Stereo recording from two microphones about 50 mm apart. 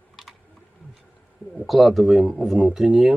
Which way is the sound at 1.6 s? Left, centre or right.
Centre.